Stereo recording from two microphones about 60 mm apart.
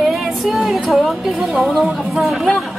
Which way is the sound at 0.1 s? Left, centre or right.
Centre.